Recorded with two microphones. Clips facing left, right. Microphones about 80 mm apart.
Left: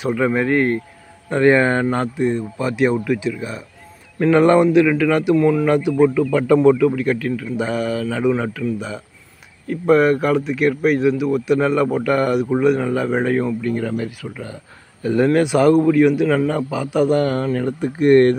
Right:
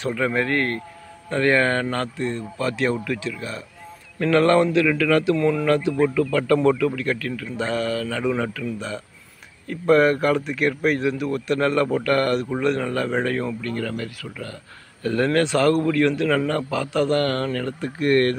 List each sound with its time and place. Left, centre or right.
0.0 s speech: centre